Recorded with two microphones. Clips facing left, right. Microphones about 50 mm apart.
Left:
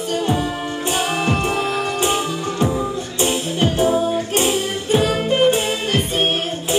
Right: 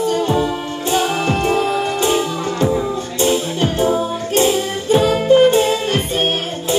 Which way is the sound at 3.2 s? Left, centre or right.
Left.